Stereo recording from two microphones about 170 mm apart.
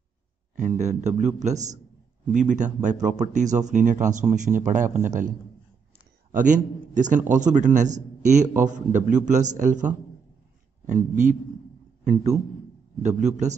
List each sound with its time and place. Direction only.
0.6 s a man's voice: 45° right (ahead or behind)
6.3 s a man's voice: 50° right (ahead or behind)
12.0 s a man's voice: 45° right (ahead or behind)